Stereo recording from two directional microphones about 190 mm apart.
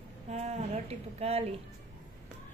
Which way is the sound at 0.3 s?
35° right (ahead or behind).